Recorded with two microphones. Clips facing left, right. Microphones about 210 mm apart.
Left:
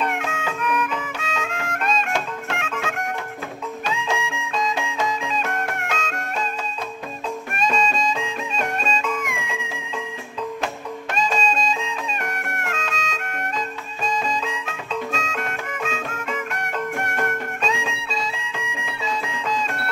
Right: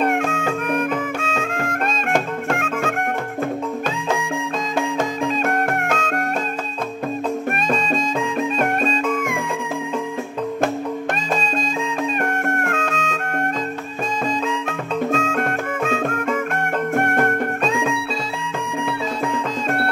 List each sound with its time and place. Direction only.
0.0 s music: 50° right (ahead or behind)
7.5 s music: 55° right (ahead or behind)
11.1 s music: 55° right (ahead or behind)